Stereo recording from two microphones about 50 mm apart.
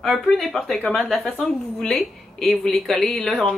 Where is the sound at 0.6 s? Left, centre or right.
Centre.